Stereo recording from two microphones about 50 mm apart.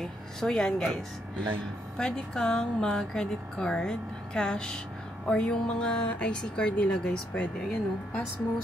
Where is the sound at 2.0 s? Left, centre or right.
Centre.